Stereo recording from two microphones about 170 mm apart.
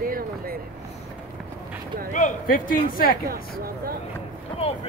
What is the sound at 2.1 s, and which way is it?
Speech, 45° left (ahead or behind).